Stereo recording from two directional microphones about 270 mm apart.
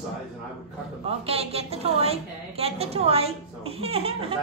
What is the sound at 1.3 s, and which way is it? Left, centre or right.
A woman's voice, right.